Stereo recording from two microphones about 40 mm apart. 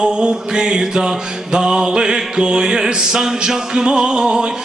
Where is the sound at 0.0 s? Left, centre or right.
Centre.